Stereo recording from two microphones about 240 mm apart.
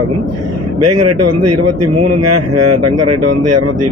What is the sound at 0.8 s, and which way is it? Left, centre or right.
Speech, right.